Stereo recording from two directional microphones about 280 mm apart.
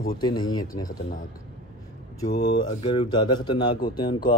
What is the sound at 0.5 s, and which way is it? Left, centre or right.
Speech, centre.